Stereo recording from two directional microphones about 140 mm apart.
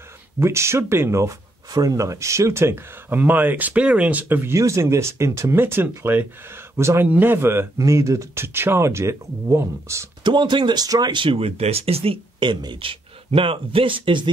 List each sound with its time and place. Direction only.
0.4 s speech: 20° right (ahead or behind)
10.2 s speech: 35° right (ahead or behind)